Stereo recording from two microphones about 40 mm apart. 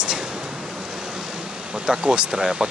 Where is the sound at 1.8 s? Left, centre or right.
Centre.